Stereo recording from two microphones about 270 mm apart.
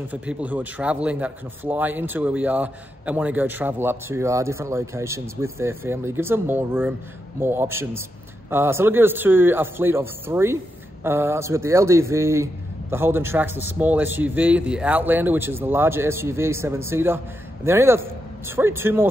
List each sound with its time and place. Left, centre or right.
0.1 s a man's voice: centre